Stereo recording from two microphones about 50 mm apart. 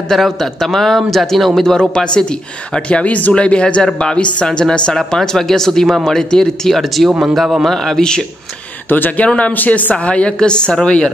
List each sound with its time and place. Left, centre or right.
0.1 s a man's voice: centre; by 3.3 s left
3.3 s a man's voice: left
8.8 s speech: left
9.9 s a woman's voice: left